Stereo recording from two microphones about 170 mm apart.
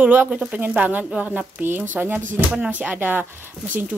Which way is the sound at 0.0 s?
10° right (ahead or behind).